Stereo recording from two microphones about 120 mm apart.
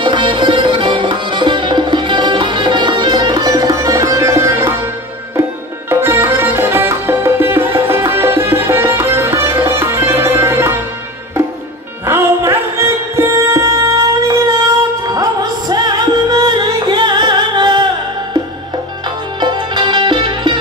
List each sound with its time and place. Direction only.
0.0 s music: 40° right (ahead or behind); by 4.7 s 20° right (ahead or behind)
5.9 s music: 20° right (ahead or behind)
12.1 s music: 20° right (ahead or behind)
15.7 s music: 35° right (ahead or behind)
19.4 s music: 40° right (ahead or behind)